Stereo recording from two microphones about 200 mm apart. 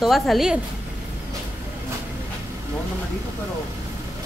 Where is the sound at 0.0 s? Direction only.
Centre (ahead or behind).